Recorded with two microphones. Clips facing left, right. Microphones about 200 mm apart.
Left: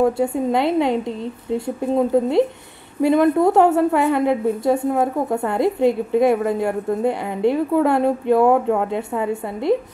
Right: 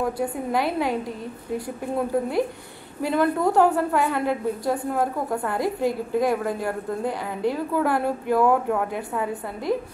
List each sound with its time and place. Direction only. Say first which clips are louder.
0.0 s a woman's voice: left 8 dB; 25° left (ahead or behind)